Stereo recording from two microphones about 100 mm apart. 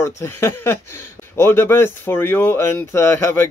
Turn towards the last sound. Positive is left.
turn(degrees=25)  # may be behind; listen again after turning